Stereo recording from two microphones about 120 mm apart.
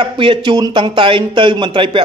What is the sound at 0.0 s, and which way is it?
Speech, 40° right (ahead or behind).